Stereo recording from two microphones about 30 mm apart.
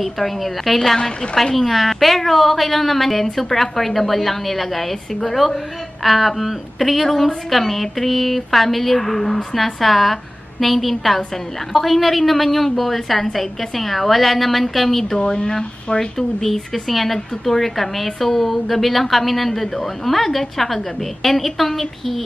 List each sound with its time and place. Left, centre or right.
0.0 s speech: centre
15.2 s speech: left; by 22.2 s centre